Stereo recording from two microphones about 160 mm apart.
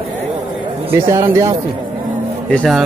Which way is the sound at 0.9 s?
15° right (ahead or behind).